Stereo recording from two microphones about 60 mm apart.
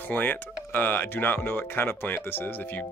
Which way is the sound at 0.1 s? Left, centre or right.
Left.